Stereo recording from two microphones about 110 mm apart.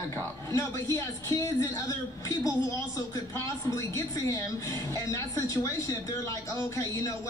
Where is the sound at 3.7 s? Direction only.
30° left (ahead or behind).